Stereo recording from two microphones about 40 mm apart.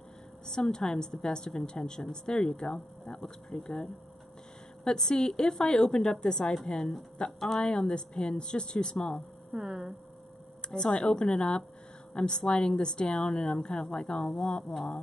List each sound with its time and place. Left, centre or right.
0.5 s a woman's voice: centre
7.3 s a woman's voice: centre
7.6 s a woman's voice: left
9.6 s a sound: centre
10.7 s a woman's voice: left
14.6 s speech: centre